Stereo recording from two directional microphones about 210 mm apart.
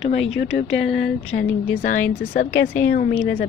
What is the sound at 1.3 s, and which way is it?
Speech, 50° left (ahead or behind).